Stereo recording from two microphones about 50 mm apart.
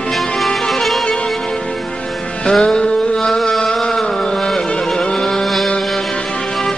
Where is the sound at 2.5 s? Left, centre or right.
Centre.